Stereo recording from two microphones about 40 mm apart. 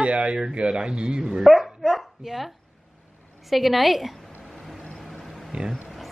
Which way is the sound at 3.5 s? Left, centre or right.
Centre.